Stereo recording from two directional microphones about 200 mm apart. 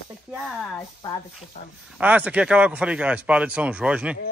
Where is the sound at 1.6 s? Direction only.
35° left (ahead or behind).